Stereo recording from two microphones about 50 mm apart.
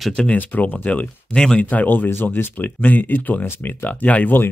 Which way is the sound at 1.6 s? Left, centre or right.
Left.